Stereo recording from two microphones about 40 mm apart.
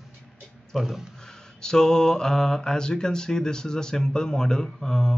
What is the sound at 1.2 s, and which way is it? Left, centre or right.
A man's voice, centre.